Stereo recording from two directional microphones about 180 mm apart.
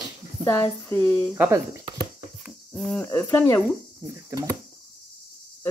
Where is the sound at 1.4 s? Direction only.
10° right (ahead or behind).